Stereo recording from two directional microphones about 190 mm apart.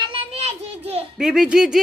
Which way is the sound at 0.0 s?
30° right (ahead or behind).